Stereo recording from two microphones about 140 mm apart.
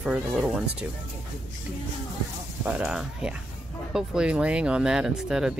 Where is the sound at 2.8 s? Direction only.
5° right (ahead or behind).